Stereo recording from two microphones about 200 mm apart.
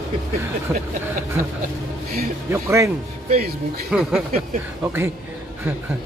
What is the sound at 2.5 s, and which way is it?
Speech, 15° right (ahead or behind).